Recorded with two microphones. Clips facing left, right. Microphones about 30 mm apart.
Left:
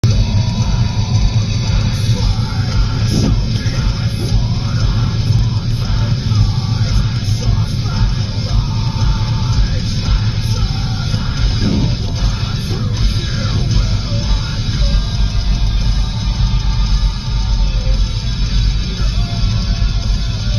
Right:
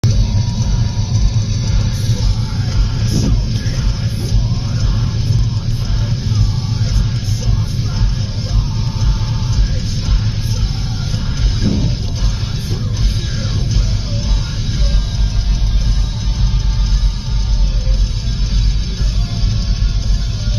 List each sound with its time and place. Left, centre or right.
0.5 s music: centre
3.1 s music: centre
11.6 s music: centre